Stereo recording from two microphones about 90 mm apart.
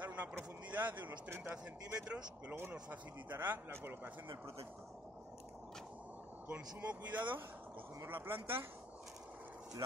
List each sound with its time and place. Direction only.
0.0 s a sound: 15° right (ahead or behind)
0.7 s a man's voice: 20° right (ahead or behind)
6.4 s a man's voice: 15° right (ahead or behind)